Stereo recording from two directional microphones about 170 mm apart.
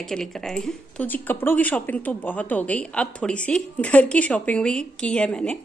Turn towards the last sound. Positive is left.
turn(degrees=5)  # may be behind; listen again after turning